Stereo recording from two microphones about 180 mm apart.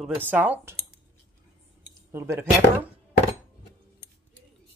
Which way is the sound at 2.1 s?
15° right (ahead or behind).